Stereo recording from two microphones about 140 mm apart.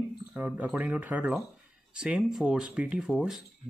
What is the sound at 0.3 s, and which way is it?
Speech, 10° right (ahead or behind).